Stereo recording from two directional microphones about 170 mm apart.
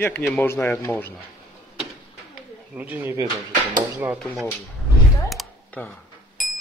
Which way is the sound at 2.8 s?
10° right (ahead or behind).